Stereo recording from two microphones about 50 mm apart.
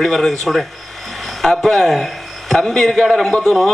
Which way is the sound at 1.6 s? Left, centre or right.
Centre.